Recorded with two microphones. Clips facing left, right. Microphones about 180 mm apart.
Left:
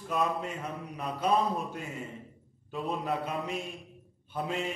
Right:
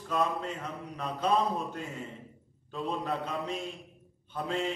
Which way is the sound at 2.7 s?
5° left (ahead or behind).